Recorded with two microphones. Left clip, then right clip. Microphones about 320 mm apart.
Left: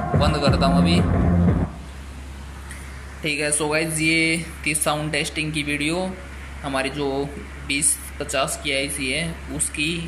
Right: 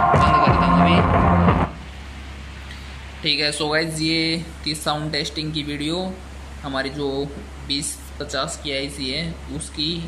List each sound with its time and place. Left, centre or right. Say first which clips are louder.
0.2 s music: right 5 dB; centre
1.1 s a sound: right 7 dB; right
3.3 s speech: right 2 dB; centre